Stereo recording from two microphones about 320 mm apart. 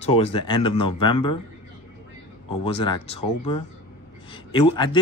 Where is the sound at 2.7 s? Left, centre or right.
Centre.